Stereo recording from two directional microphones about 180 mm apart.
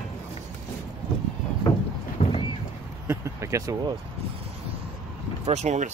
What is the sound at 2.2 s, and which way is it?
Vehicle, 30° left (ahead or behind).